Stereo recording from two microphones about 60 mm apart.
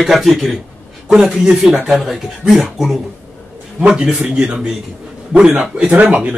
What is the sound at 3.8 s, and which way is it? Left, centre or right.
A man's voice, centre.